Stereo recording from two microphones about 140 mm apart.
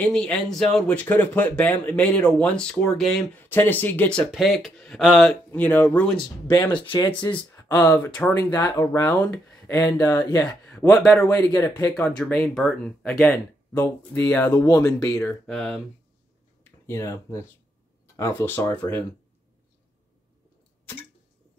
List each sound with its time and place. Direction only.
0.0 s speech: 5° left (ahead or behind)
4.3 s speech: centre (ahead or behind)
6.1 s speech: 35° left (ahead or behind)
7.5 s speech: 20° left (ahead or behind)
9.8 s speech: 25° left (ahead or behind)
10.1 s speech: 10° left (ahead or behind)
11.5 s speech: 20° left (ahead or behind)
11.9 s speech: 5° left (ahead or behind); by 15.3 s 20° left (ahead or behind)
15.4 s speech: 5° left (ahead or behind)
16.8 s speech: 20° left (ahead or behind)